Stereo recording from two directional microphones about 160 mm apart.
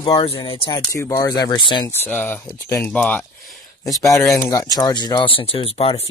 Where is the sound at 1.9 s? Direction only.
10° left (ahead or behind).